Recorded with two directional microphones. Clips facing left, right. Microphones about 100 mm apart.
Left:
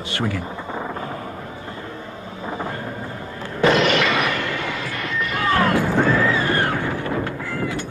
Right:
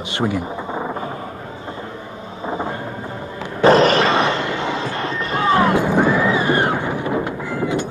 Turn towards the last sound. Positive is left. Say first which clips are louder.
# right 4 dB
turn(degrees=-20)  # may be behind; listen again after turning